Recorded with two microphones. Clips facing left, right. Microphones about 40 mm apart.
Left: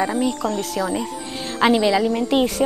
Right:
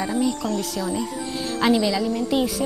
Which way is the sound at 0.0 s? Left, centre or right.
Left.